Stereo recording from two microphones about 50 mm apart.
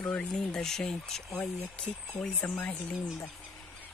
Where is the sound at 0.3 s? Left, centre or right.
Centre.